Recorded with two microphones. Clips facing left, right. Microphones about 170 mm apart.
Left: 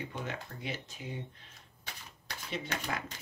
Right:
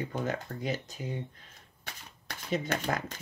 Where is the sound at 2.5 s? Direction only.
45° right (ahead or behind).